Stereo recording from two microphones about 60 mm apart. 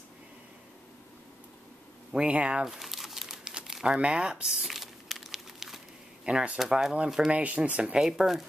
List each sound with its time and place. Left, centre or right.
2.1 s speech: centre
2.6 s crumpling: centre
6.2 s speech: centre